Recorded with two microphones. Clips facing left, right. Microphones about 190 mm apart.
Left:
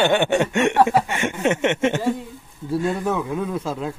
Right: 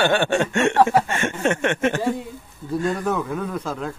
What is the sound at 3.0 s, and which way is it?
Speech, 5° left (ahead or behind).